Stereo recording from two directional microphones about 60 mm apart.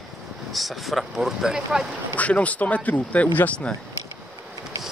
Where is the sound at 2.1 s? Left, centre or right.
Left.